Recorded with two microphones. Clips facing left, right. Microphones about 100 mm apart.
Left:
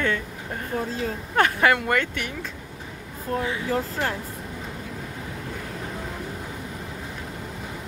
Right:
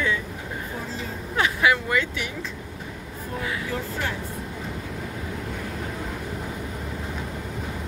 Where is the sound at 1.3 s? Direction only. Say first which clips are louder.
Left 2 dB; 55° left (ahead or behind).